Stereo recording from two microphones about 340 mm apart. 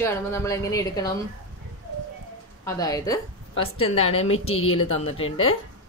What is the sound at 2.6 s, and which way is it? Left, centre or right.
A woman's voice, centre.